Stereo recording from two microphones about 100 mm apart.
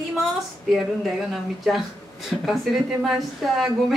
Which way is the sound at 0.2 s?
Centre (ahead or behind).